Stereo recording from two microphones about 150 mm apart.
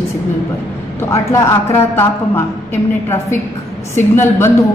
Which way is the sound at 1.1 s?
20° left (ahead or behind).